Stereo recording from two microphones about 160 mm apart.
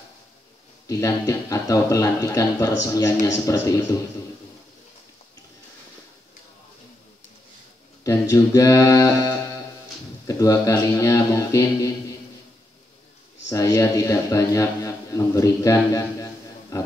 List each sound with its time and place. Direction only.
0.8 s speech: 20° left (ahead or behind)
8.0 s a man's voice: 20° left (ahead or behind)
13.5 s a man's voice: 20° left (ahead or behind)